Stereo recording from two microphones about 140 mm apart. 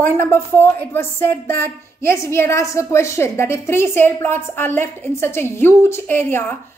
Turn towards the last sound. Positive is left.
turn(degrees=15)  # may be behind; listen again after turning